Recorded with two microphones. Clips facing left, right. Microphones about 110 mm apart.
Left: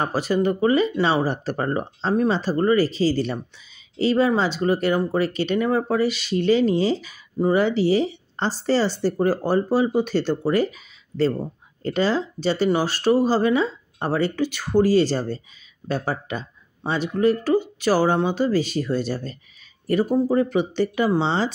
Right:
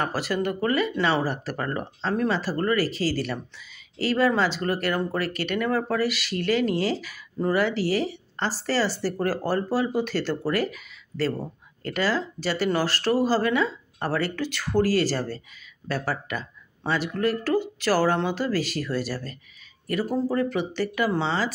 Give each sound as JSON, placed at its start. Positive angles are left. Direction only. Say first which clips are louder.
{"t": 0.0, "sound": "speech", "louder": "left 5 dB", "side_deg": 20}